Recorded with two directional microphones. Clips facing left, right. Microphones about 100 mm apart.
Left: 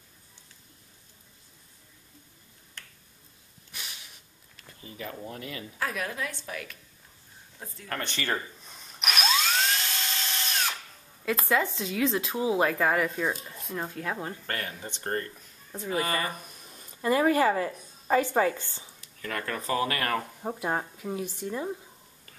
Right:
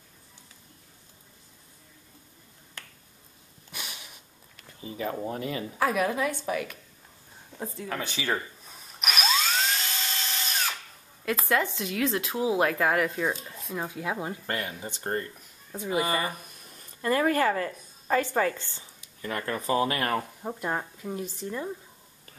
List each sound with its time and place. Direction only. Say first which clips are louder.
3.7 s a sound: right 3 dB; 60° right (ahead or behind)
4.9 s speech: right 7 dB; 30° right (ahead or behind)
5.8 s a woman's voice: right 7 dB; 15° right (ahead or behind)
7.9 s drill: even; 5° right (ahead or behind)
11.2 s speech: even; centre (ahead or behind); by 15.4 s 15° right (ahead or behind)
15.7 s speech: right 2 dB; 5° right (ahead or behind)
16.0 s a woman's voice: right 2 dB; 15° right (ahead or behind)
16.4 s speech: left 1 dB; 15° left (ahead or behind)
18.9 s speech: right 1 dB; 15° right (ahead or behind)
20.4 s speech: left 1 dB; 5° left (ahead or behind)